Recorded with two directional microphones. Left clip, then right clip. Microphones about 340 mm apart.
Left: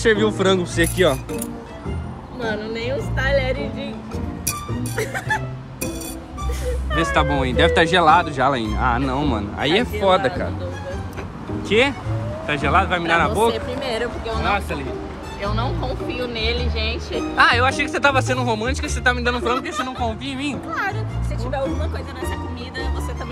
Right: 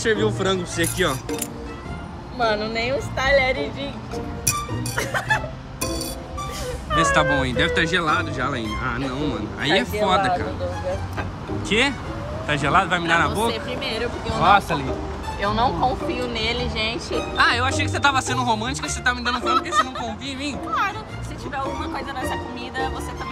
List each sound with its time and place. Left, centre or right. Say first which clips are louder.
0.0 s speech: left 4 dB; centre
2.6 s music: right 1 dB; centre
4.9 s music: right 1 dB; centre
6.9 s speech: right 2 dB; centre
11.7 s speech: left 3 dB; centre
15.4 s speech: right 6 dB; right
17.4 s speech: left 4 dB; centre